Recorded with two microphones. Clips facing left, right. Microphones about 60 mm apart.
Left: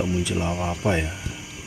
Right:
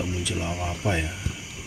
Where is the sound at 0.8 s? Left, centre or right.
Centre.